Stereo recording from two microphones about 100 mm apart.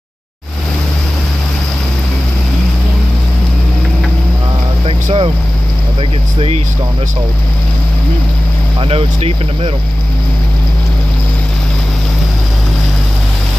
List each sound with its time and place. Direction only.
4.8 s vehicle: 65° right (ahead or behind)
8.8 s speech: 75° right (ahead or behind)